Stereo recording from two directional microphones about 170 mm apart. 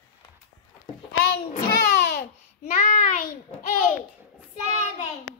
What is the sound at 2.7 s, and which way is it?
Child singing, 50° left (ahead or behind).